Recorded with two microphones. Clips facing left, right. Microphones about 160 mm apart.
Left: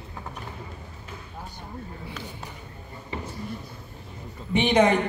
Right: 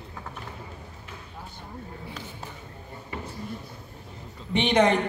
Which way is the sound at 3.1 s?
20° left (ahead or behind).